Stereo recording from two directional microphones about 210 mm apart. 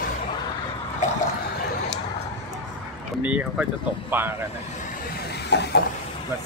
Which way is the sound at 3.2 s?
5° right (ahead or behind).